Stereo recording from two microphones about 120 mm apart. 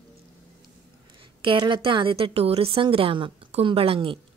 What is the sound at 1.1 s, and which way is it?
A woman's voice, 45° right (ahead or behind).